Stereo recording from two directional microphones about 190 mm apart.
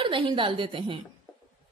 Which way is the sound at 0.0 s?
25° right (ahead or behind).